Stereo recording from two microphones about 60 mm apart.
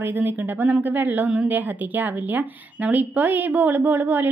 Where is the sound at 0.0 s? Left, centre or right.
Right.